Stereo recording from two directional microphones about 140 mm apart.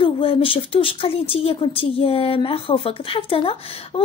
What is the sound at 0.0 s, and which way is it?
Speech, 40° left (ahead or behind).